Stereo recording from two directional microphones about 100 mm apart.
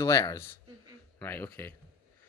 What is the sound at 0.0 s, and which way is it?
Speech, 35° left (ahead or behind).